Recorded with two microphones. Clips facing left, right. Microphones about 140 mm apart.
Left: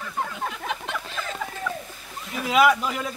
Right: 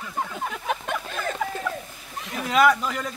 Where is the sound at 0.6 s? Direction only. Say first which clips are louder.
Right 3 dB; 50° right (ahead or behind).